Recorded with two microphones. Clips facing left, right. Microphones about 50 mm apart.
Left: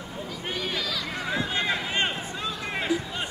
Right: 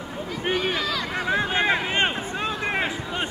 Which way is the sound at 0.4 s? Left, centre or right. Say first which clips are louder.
Right 7 dB; right.